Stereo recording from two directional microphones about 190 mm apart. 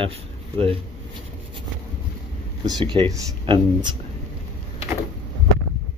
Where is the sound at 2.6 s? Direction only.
20° right (ahead or behind).